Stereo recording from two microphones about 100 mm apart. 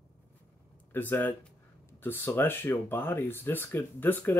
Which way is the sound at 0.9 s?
20° left (ahead or behind).